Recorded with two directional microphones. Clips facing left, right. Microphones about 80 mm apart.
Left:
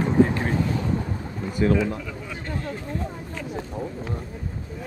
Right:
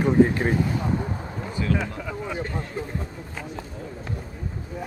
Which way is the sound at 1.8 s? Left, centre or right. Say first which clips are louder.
Left 2 dB; right.